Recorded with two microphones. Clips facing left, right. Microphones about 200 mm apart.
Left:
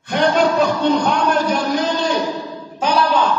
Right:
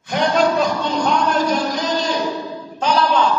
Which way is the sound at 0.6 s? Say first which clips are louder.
Left 3 dB; 60° left (ahead or behind).